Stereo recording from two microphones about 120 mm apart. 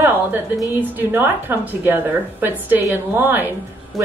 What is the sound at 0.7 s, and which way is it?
A woman's voice, 15° right (ahead or behind).